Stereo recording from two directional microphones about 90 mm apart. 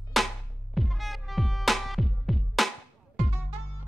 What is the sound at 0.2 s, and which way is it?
Music, centre (ahead or behind).